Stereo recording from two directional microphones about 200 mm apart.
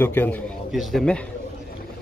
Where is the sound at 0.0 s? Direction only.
10° left (ahead or behind).